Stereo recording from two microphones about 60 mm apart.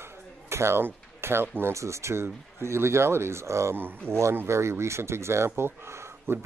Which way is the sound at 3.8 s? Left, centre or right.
Right.